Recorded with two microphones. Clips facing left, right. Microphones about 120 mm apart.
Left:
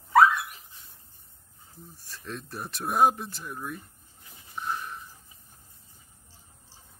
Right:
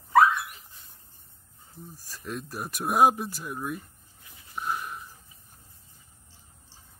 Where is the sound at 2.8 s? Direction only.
20° right (ahead or behind).